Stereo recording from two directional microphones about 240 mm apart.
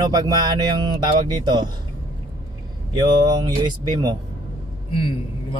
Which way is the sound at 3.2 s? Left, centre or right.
Centre.